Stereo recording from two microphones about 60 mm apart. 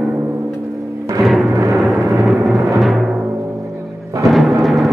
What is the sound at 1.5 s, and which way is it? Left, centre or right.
Timpani, right.